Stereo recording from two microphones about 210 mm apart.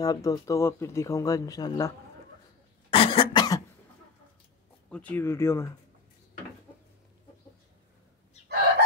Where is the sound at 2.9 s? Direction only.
25° left (ahead or behind).